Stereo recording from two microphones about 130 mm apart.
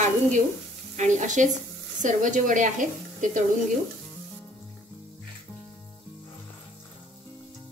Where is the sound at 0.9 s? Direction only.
70° right (ahead or behind).